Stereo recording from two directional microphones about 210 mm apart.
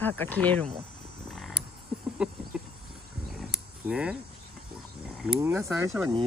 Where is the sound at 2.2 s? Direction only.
5° right (ahead or behind).